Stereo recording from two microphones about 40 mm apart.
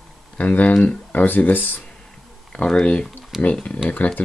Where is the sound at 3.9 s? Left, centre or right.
Left.